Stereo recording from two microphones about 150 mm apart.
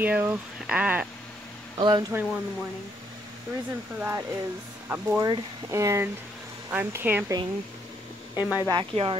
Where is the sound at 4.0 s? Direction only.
15° right (ahead or behind).